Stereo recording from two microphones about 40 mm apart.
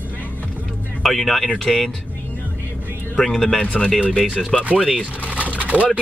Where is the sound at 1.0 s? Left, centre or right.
Centre.